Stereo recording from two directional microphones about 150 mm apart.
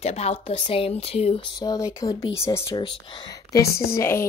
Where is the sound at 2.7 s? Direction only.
30° left (ahead or behind).